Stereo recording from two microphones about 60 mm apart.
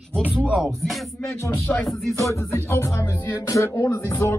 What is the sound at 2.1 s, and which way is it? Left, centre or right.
Music, left.